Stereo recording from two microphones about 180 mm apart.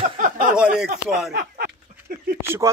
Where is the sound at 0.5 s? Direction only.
5° right (ahead or behind).